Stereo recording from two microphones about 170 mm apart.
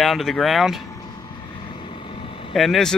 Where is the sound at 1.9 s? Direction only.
30° left (ahead or behind).